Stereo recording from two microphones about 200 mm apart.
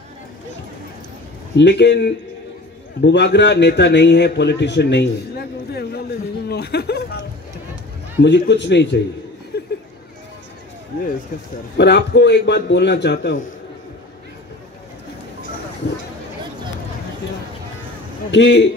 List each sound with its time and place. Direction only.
1.6 s a man's voice: 55° left (ahead or behind)
9.5 s a sound: 55° left (ahead or behind)
11.7 s a man's voice: 55° left (ahead or behind)
18.3 s a man's voice: 65° left (ahead or behind)